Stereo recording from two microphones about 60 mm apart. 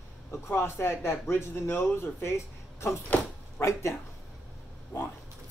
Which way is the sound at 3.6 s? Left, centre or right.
Left.